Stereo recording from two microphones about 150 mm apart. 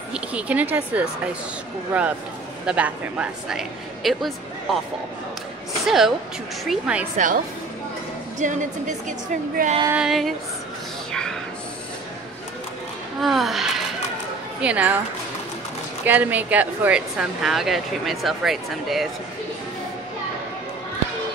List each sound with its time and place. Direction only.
0.1 s speech: 10° right (ahead or behind)
5.9 s speech: centre (ahead or behind)
7.2 s a woman's voice: 60° right (ahead or behind)
9.9 s speech: centre (ahead or behind)
11.1 s a sound: 5° left (ahead or behind)
13.2 s speech: centre (ahead or behind)
16.1 s speech: 10° right (ahead or behind)